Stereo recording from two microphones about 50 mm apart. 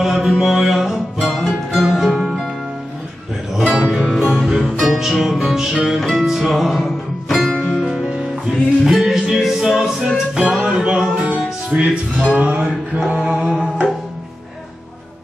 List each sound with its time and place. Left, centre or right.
0.0 s mantra: centre
0.4 s music: centre
3.5 s music: centre
8.8 s music: centre
10.4 s music: right
13.1 s mantra: centre